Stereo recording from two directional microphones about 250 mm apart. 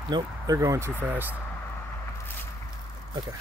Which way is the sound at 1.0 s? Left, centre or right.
Centre.